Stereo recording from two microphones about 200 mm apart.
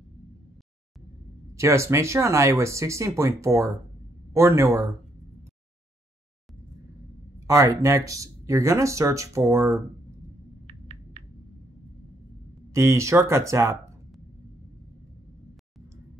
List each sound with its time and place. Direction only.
1.6 s speech: 15° right (ahead or behind)
7.4 s speech: 15° right (ahead or behind)
10.7 s a sound: 30° right (ahead or behind)
12.7 s speech: 15° right (ahead or behind)